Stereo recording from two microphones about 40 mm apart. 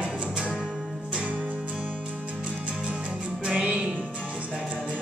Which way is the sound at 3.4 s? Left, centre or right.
Right.